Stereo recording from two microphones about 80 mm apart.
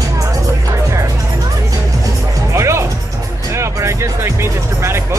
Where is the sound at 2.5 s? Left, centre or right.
Right.